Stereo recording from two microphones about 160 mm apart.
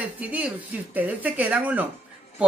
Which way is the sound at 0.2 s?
10° right (ahead or behind).